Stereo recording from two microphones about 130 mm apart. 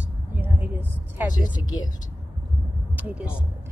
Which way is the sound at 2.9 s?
10° right (ahead or behind).